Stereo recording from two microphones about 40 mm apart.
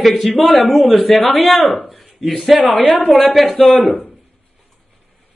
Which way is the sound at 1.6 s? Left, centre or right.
Left.